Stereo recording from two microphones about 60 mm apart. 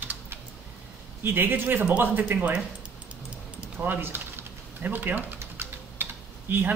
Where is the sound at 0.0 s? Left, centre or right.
Right.